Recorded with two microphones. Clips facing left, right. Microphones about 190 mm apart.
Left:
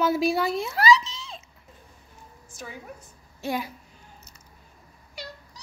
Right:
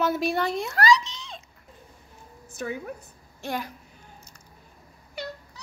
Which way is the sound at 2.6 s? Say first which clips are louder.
Right 8 dB; 60° right (ahead or behind).